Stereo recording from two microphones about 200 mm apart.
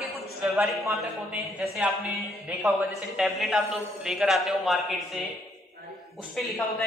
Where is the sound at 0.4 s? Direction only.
10° right (ahead or behind).